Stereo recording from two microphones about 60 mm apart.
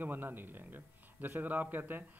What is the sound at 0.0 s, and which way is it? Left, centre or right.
Speech, right.